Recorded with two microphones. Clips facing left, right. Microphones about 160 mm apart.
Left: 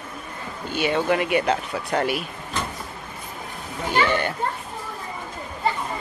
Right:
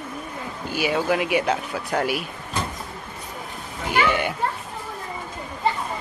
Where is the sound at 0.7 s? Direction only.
5° right (ahead or behind).